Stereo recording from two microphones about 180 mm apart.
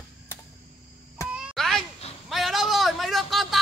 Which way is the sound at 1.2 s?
5° right (ahead or behind).